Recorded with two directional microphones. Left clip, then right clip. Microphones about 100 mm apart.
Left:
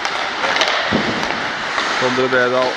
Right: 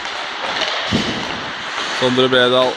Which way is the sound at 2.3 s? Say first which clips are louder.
Right 2 dB; 25° right (ahead or behind).